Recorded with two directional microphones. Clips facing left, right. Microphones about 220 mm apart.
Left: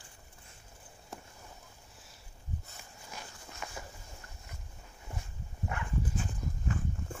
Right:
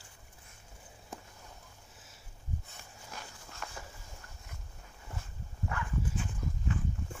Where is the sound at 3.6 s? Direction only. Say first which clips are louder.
Left 1 dB; 5° left (ahead or behind).